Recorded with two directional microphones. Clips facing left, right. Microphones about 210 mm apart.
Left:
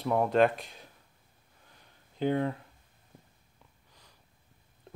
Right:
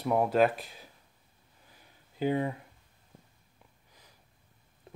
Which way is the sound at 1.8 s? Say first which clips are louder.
Even; 10° right (ahead or behind).